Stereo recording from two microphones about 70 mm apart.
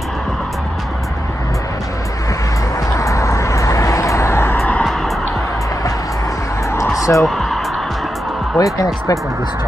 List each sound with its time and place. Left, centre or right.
3.0 s vehicle: left
6.7 s a sound: left
7.2 s music: centre
8.5 s speech: left